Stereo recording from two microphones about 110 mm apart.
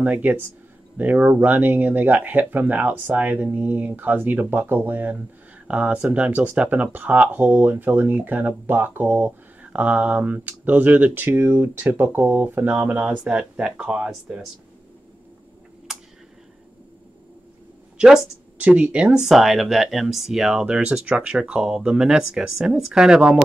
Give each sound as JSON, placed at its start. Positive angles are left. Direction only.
{"t": 0.0, "sound": "speech", "side_deg": -15}
{"t": 15.9, "sound": "a sound", "side_deg": -5}
{"t": 17.9, "sound": "speech", "side_deg": -5}